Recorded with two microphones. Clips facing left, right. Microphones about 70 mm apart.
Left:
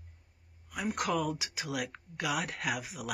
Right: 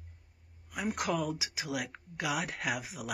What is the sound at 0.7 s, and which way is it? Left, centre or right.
Speech, centre.